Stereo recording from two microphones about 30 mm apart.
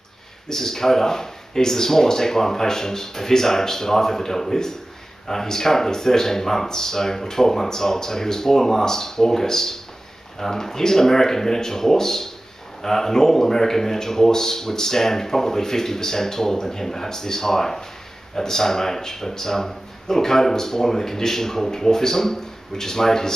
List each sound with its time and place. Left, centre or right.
0.5 s speech: centre